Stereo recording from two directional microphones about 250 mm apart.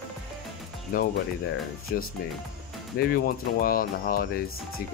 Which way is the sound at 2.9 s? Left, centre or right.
Left.